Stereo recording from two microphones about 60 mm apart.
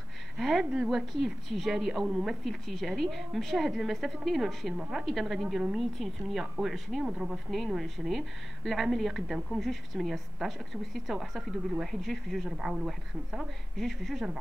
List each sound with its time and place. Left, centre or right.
0.4 s a woman's voice: centre
7.1 s speech: centre
7.5 s a woman's voice: centre
12.4 s speech: centre
13.7 s a woman's voice: centre